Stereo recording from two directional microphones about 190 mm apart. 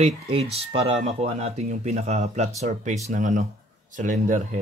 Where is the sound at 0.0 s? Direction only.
30° right (ahead or behind).